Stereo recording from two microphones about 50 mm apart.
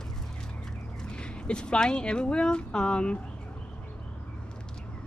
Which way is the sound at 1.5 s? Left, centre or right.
Centre.